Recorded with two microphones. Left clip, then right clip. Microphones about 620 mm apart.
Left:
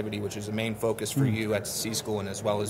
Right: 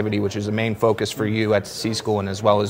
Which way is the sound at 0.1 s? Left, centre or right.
Right.